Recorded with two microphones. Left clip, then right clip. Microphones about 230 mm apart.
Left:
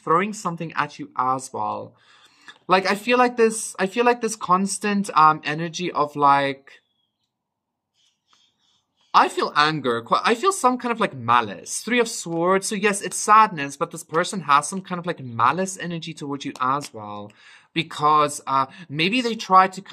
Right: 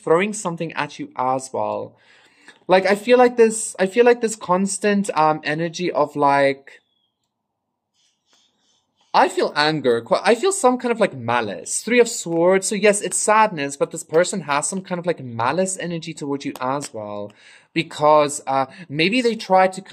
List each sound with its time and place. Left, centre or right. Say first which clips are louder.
0.0 s speech: right 2 dB; centre
9.1 s speech: right 1 dB; centre